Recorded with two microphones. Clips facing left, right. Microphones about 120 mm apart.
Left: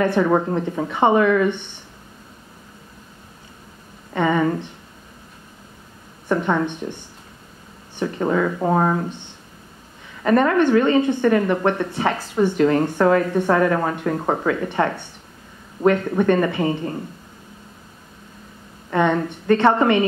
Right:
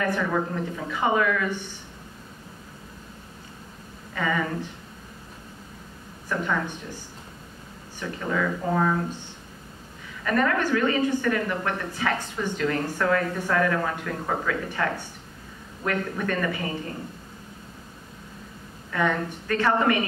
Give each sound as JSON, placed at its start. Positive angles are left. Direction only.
{"t": 0.0, "sound": "speech", "side_deg": 30}
{"t": 0.3, "sound": "speech", "side_deg": 40}
{"t": 0.9, "sound": "speech", "side_deg": 30}
{"t": 4.1, "sound": "speech", "side_deg": 30}
{"t": 6.2, "sound": "a woman's voice", "side_deg": 30}
{"t": 8.0, "sound": "speech", "side_deg": 35}
{"t": 10.2, "sound": "speech", "side_deg": 25}
{"t": 18.9, "sound": "speech", "side_deg": 30}